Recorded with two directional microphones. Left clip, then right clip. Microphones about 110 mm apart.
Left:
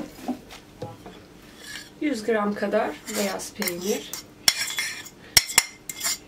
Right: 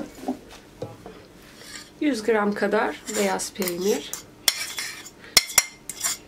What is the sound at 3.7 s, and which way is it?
Speech, 10° right (ahead or behind).